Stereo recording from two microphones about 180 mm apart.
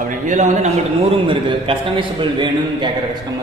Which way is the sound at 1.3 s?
30° right (ahead or behind).